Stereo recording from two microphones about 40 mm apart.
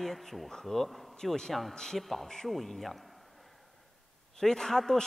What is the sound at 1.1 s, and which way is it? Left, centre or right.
Speech, centre.